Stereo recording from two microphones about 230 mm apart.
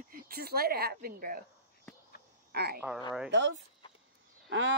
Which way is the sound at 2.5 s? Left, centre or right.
Right.